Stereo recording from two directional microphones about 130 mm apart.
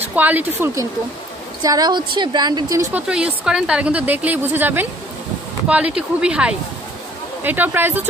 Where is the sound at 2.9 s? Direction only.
10° right (ahead or behind).